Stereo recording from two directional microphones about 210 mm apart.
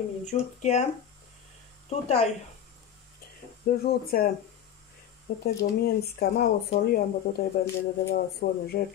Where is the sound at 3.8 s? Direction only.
45° left (ahead or behind).